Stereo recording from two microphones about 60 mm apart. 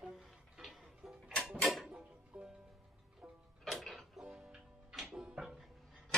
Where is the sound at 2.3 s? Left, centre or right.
Centre.